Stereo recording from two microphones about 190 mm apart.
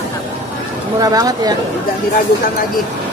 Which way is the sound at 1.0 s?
20° right (ahead or behind).